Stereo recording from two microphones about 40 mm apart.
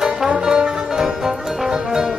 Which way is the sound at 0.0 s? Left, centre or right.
Centre.